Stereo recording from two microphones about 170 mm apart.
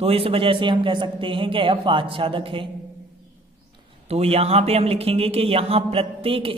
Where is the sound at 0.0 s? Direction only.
35° right (ahead or behind).